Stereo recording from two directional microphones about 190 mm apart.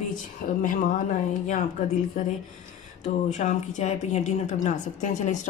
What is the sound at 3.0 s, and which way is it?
A woman's voice, 35° left (ahead or behind).